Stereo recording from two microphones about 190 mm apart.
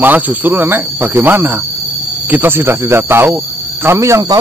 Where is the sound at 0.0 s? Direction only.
10° right (ahead or behind).